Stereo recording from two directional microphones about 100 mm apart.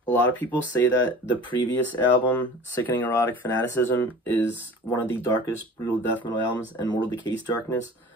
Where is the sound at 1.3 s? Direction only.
50° left (ahead or behind).